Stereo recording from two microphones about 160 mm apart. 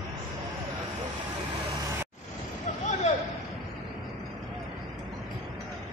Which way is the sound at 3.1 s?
45° left (ahead or behind).